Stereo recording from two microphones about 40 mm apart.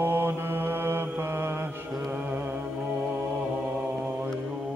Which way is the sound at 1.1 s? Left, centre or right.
Right.